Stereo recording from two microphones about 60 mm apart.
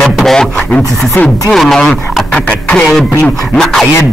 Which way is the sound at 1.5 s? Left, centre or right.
Centre.